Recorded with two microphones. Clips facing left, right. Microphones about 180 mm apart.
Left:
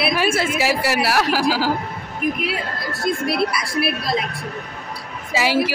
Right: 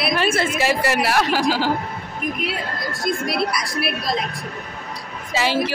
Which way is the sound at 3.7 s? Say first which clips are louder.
Left 2 dB; 5° left (ahead or behind).